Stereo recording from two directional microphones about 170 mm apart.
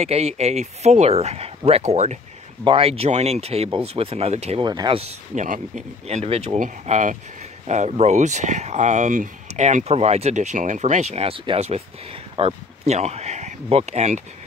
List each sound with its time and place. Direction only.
0.0 s speech: 40° right (ahead or behind)
4.6 s speech: 25° right (ahead or behind)